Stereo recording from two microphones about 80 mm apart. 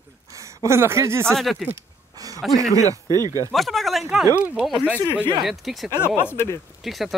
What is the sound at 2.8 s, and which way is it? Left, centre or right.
Speech, right.